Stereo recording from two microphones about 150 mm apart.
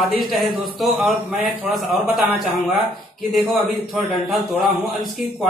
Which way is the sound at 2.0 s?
10° right (ahead or behind).